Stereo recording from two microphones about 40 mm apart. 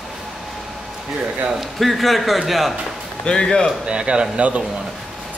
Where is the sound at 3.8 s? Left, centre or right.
Right.